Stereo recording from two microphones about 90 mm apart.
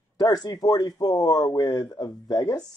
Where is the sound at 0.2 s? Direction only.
45° left (ahead or behind).